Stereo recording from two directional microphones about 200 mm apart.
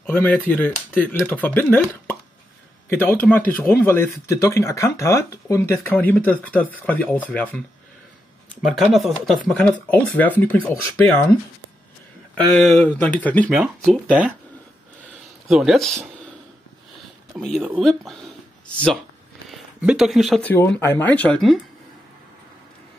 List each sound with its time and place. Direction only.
0.0 s speech: 10° left (ahead or behind)
8.6 s speech: centre (ahead or behind)
12.4 s speech: 5° left (ahead or behind)
13.8 s speech: 5° right (ahead or behind)
15.4 s speech: centre (ahead or behind)
17.3 s speech: centre (ahead or behind)
19.5 s speech: centre (ahead or behind)